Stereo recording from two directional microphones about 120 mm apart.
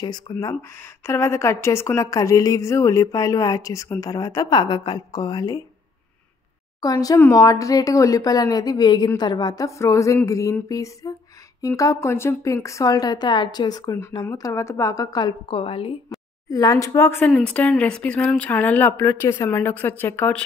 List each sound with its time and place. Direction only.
0.3 s a woman's voice: 30° left (ahead or behind)
6.8 s a woman's voice: 30° left (ahead or behind); by 16.0 s 50° left (ahead or behind)
16.4 s a woman's voice: 30° left (ahead or behind)
17.3 s speech: 10° left (ahead or behind)